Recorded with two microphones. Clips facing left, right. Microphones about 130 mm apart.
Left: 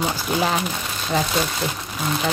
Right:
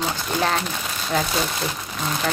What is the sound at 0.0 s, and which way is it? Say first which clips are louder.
Speech: left 1 dB; 10° left (ahead or behind).